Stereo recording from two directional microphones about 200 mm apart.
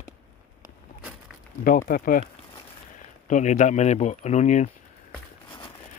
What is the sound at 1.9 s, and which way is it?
Speech, 45° left (ahead or behind).